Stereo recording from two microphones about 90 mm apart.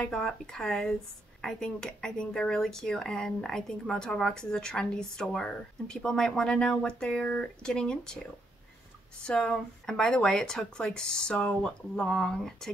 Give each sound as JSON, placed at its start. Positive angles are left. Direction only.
{"t": 0.0, "sound": "speech", "side_deg": 5}
{"t": 9.2, "sound": "speech", "side_deg": 10}